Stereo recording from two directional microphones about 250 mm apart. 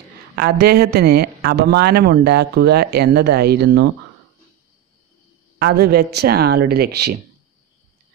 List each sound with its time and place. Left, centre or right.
0.4 s speech: right
5.6 s speech: right